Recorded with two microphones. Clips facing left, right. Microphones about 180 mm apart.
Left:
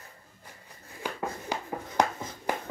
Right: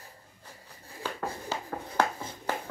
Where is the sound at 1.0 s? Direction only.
15° left (ahead or behind).